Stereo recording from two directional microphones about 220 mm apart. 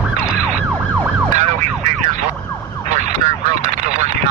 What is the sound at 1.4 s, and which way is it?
Vehicle, 30° right (ahead or behind).